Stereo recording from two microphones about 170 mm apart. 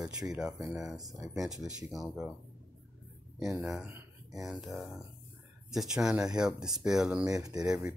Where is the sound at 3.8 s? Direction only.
20° right (ahead or behind).